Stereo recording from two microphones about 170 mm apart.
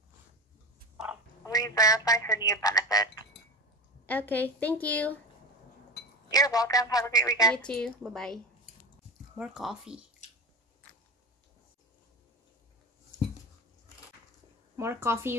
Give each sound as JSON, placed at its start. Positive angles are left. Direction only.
{"t": 1.4, "sound": "speech", "side_deg": 20}
{"t": 4.0, "sound": "a woman's voice", "side_deg": 10}
{"t": 6.3, "sound": "speech", "side_deg": 20}
{"t": 7.5, "sound": "a woman's voice", "side_deg": 5}
{"t": 9.4, "sound": "a woman's voice", "side_deg": -5}
{"t": 14.8, "sound": "speech", "side_deg": -15}